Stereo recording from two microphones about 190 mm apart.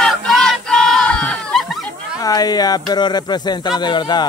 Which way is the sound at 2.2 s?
20° left (ahead or behind).